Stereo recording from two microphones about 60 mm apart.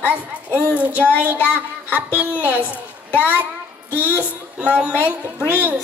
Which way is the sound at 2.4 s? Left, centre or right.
Right.